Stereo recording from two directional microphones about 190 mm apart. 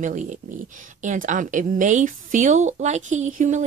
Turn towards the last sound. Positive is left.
turn(degrees=-40)  # may be behind; listen again after turning